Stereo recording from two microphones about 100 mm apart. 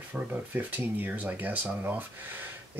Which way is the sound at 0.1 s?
15° right (ahead or behind).